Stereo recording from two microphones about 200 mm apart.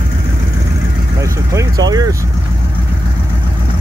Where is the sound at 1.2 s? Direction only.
15° right (ahead or behind).